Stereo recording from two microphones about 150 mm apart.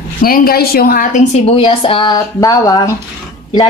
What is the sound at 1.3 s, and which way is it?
A woman's voice, 40° left (ahead or behind).